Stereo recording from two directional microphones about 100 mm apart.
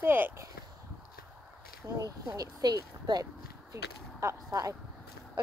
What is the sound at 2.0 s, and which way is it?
Speech, 40° right (ahead or behind).